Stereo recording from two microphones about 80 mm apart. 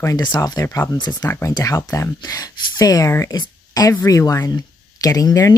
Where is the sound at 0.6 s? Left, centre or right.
Left.